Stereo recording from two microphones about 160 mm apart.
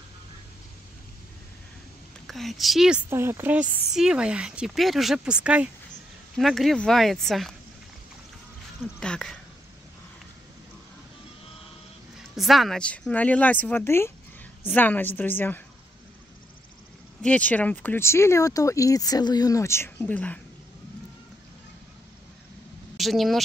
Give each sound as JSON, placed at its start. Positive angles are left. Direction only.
{"t": 2.2, "sound": "speech", "side_deg": 0}
{"t": 3.1, "sound": "speech", "side_deg": -15}
{"t": 9.0, "sound": "speech", "side_deg": 5}
{"t": 12.4, "sound": "speech", "side_deg": 0}
{"t": 17.2, "sound": "speech", "side_deg": 10}
{"t": 22.9, "sound": "speech", "side_deg": 0}